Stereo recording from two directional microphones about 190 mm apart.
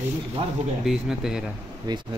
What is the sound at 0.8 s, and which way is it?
Speech, centre (ahead or behind).